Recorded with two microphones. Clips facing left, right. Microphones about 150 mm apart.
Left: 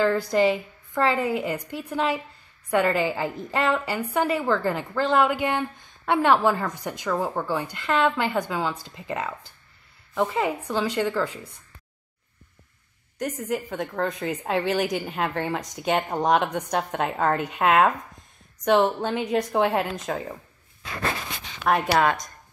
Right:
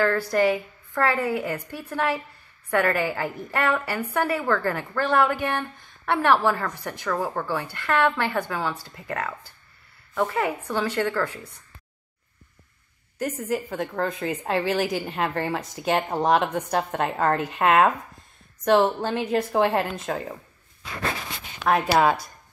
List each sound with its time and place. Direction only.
0.0 s a woman's voice: 15° left (ahead or behind)
13.2 s a woman's voice: centre (ahead or behind)
21.8 s speech: 10° right (ahead or behind)